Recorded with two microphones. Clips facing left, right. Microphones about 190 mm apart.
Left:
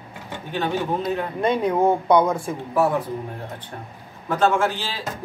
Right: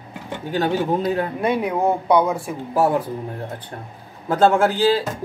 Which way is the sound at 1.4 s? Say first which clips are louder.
Left 4 dB; 10° right (ahead or behind).